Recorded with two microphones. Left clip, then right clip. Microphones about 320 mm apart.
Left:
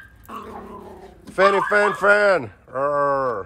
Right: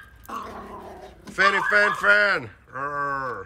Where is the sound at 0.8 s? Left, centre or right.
Centre.